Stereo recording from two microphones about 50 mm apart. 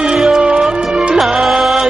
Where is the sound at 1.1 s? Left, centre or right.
Centre.